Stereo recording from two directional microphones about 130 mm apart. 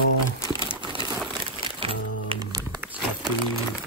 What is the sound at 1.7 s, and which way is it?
Music, 45° right (ahead or behind).